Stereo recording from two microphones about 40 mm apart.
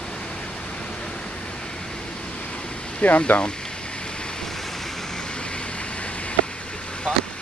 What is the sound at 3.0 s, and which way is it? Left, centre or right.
Speech, left.